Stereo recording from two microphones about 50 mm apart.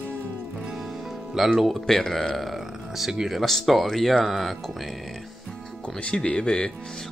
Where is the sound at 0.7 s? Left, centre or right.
Centre.